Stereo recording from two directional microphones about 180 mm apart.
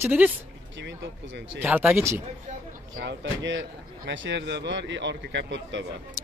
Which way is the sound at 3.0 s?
90° right.